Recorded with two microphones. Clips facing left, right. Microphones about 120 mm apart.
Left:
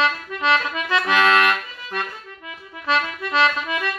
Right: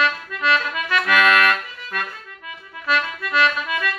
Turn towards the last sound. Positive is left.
turn(degrees=25)  # may be behind; listen again after turning